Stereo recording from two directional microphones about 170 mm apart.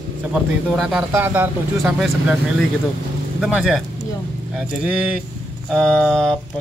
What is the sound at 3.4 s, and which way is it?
Speech, centre (ahead or behind).